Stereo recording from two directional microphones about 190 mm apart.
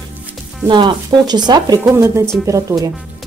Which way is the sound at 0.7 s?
25° right (ahead or behind).